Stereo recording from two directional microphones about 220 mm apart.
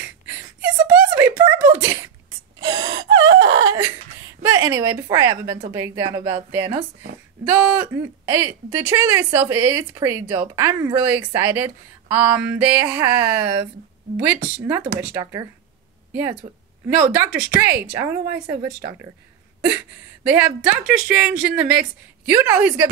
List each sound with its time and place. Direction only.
0.8 s a sound: 10° right (ahead or behind)
2.6 s wail: 20° right (ahead or behind)
3.3 s wail: 50° right (ahead or behind)
3.6 s laughter: 15° right (ahead or behind)
4.4 s speech: 15° right (ahead or behind)
20.2 s speech: 5° right (ahead or behind)